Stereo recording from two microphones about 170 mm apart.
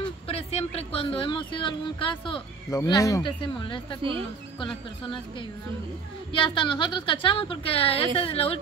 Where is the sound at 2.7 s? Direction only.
20° left (ahead or behind).